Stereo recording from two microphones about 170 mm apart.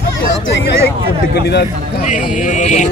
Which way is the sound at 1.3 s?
75° left (ahead or behind).